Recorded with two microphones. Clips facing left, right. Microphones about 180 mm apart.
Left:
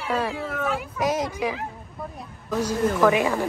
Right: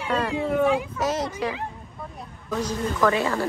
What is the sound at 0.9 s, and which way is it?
A woman's voice, 10° left (ahead or behind).